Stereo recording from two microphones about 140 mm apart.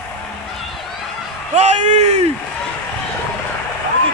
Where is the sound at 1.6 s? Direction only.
50° right (ahead or behind).